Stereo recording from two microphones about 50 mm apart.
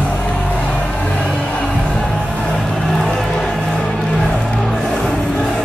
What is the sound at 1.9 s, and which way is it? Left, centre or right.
Music, centre.